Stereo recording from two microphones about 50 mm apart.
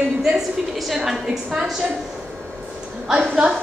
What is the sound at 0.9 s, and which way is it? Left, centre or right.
Speech, centre.